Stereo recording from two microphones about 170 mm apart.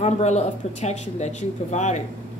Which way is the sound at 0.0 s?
40° left (ahead or behind).